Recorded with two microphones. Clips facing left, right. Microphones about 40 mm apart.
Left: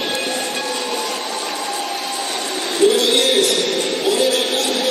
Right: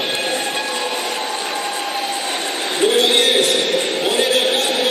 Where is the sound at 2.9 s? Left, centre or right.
Right.